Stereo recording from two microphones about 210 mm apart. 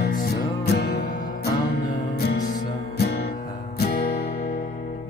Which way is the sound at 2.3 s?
50° left (ahead or behind).